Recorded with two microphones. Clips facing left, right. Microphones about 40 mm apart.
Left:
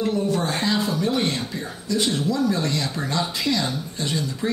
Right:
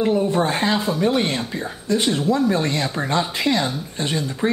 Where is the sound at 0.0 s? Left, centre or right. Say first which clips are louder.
Right 4 dB; right.